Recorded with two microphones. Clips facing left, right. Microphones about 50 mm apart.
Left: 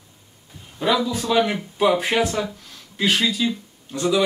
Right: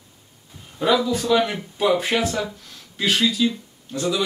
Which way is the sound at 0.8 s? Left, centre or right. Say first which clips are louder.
Right 1 dB; centre.